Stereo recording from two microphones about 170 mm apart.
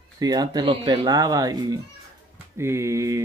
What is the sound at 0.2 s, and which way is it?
Speech, 20° right (ahead or behind).